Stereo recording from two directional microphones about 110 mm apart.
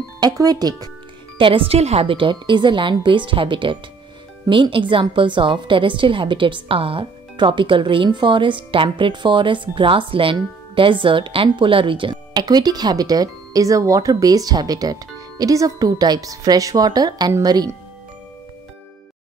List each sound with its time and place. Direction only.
0.2 s speech: 35° right (ahead or behind)
1.4 s a woman's voice: 55° right (ahead or behind); by 17.7 s 35° right (ahead or behind)